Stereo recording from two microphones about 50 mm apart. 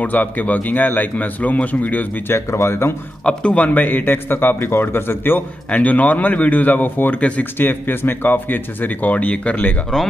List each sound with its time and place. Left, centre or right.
0.0 s speech: left
2.2 s speech: left
3.3 s a man's voice: left
5.7 s speech: left
7.5 s speech: left